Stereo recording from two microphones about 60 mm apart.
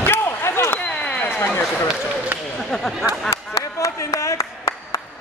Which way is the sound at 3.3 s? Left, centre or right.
Left.